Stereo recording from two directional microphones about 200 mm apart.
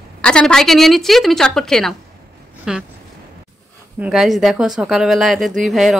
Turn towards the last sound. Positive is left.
turn(degrees=0)  # may be behind; listen again after turning